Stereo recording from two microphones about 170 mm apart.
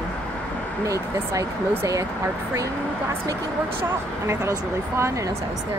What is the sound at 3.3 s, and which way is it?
Speech, 15° right (ahead or behind).